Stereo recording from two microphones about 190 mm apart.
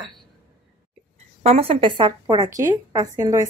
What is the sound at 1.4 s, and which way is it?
A woman's voice, 30° right (ahead or behind).